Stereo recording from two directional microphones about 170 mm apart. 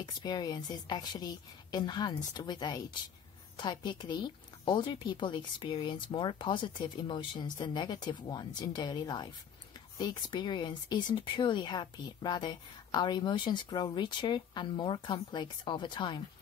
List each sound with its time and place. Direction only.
0.0 s speech: 25° left (ahead or behind)